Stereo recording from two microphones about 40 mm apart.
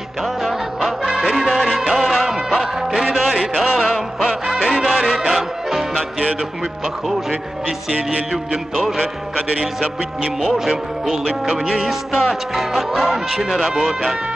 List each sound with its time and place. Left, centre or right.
0.4 s music: centre
8.3 s speech: centre
10.7 s speech: centre
12.5 s speech: centre